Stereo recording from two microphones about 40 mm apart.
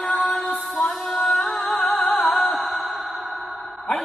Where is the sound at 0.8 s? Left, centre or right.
Centre.